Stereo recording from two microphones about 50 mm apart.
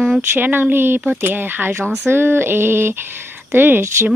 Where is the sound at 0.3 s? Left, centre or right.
Right.